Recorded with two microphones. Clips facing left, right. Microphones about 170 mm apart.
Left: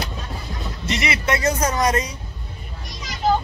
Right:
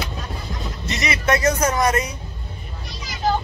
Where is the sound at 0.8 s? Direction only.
25° left (ahead or behind).